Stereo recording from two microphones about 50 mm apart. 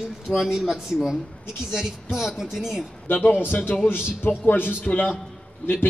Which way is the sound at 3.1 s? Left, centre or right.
Left.